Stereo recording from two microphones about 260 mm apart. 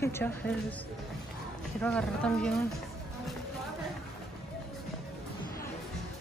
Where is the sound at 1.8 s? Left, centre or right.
Centre.